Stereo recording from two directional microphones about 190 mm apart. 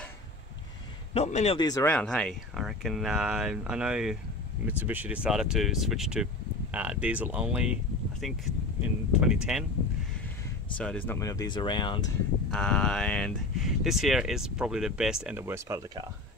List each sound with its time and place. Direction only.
1.1 s a man's voice: 35° left (ahead or behind)
1.6 s speech: 20° left (ahead or behind)
1.9 s speech: 5° left (ahead or behind)
8.8 s speech: 5° right (ahead or behind)
10.8 s speech: 5° left (ahead or behind); by 12.1 s 25° left (ahead or behind)
12.4 s speech: 5° left (ahead or behind); by 15.8 s 15° right (ahead or behind)